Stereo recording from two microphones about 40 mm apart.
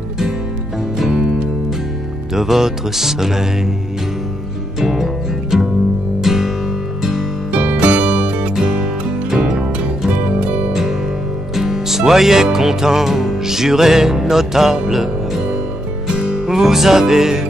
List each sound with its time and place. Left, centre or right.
2.3 s music: centre
4.7 s music: centre
7.8 s music: right
8.5 s music: centre
10.2 s music: right
10.7 s music: centre